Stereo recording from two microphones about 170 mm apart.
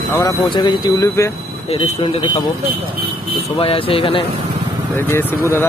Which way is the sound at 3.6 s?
35° left (ahead or behind).